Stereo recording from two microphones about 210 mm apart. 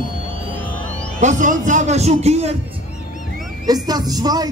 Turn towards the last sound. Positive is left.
turn(degrees=-20)  # may be behind; listen again after turning